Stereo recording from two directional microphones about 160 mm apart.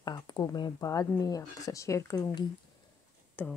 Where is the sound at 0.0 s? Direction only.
25° left (ahead or behind).